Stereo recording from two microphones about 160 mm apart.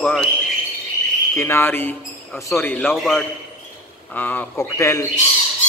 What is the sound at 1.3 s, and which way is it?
A man's voice, 15° left (ahead or behind).